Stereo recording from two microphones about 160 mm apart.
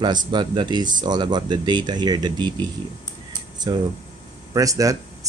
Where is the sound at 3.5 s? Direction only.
25° right (ahead or behind).